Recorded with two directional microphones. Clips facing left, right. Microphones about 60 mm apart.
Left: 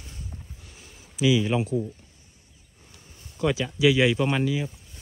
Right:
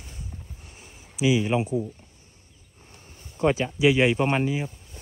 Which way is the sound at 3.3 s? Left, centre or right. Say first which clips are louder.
Right 3 dB; right.